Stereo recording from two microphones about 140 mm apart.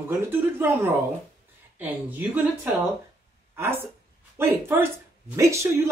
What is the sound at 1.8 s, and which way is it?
Speech, 15° right (ahead or behind).